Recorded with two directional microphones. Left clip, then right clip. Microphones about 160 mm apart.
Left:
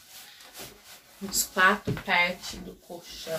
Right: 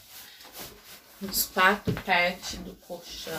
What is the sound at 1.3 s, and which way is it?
Speech, 10° left (ahead or behind).